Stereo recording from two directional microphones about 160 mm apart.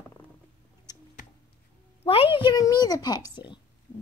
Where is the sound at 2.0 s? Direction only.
35° left (ahead or behind).